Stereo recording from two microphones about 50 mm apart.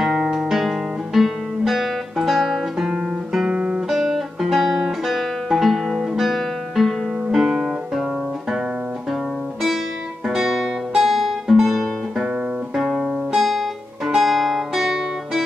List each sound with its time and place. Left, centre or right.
0.0 s guitar: centre
1.7 s music: centre
3.4 s guitar: right
3.9 s music: centre
5.9 s guitar: centre
7.2 s music: centre
10.2 s guitar: centre
12.7 s music: centre